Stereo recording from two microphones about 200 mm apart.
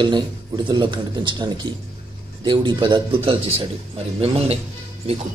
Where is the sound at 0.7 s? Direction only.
25° right (ahead or behind).